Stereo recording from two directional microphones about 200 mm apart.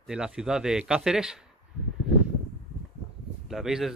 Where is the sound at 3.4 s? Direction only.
Centre (ahead or behind).